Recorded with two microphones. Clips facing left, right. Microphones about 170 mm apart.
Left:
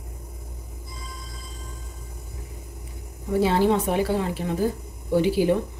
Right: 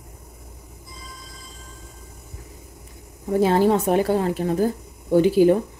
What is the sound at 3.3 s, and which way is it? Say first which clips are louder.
A woman's voice: right 3 dB; 45° right (ahead or behind).